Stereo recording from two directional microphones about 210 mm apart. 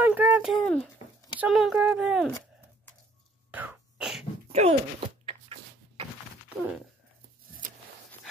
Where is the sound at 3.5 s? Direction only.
10° right (ahead or behind).